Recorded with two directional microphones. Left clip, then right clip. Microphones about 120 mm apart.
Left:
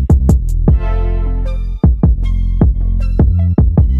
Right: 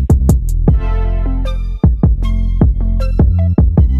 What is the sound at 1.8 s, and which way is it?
Music, centre (ahead or behind).